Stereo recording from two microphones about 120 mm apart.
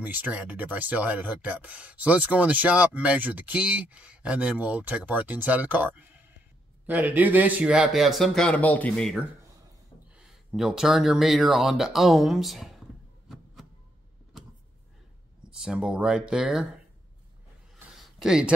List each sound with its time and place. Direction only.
0.0 s a man's voice: 15° right (ahead or behind)
15.6 s speech: 5° right (ahead or behind)
17.9 s a sound: 5° right (ahead or behind)